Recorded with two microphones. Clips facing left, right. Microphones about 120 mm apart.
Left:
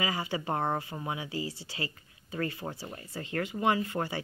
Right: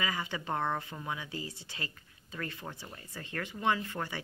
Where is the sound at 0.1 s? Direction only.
15° left (ahead or behind).